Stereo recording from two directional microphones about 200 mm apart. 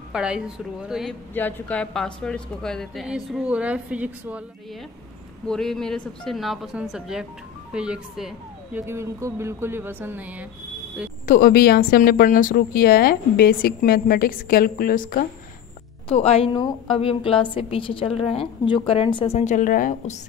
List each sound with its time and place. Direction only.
0.1 s speech: 5° right (ahead or behind)
1.3 s speech: 10° left (ahead or behind)
5.5 s speech: centre (ahead or behind)
11.2 s a woman's voice: 45° left (ahead or behind)
16.1 s a woman's voice: 30° left (ahead or behind)